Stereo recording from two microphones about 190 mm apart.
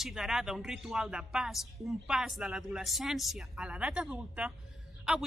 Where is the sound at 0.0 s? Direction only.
Centre (ahead or behind).